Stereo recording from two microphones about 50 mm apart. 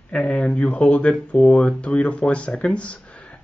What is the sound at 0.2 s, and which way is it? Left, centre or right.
Speech, left.